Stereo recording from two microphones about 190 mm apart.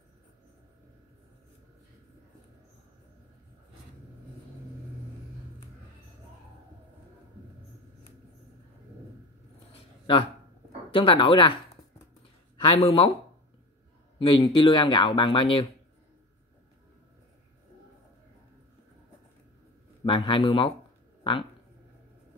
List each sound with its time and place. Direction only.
9.7 s a sound: 30° left (ahead or behind)
10.9 s speech: 25° left (ahead or behind)
12.5 s speech: 30° left (ahead or behind)
14.1 s speech: 25° left (ahead or behind)
20.1 s speech: 25° left (ahead or behind)
21.2 s a sound: 25° left (ahead or behind)